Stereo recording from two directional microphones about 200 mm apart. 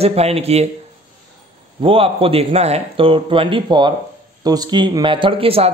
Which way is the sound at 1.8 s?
25° right (ahead or behind).